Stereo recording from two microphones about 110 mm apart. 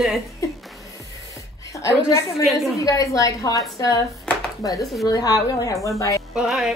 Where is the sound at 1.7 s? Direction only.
30° left (ahead or behind).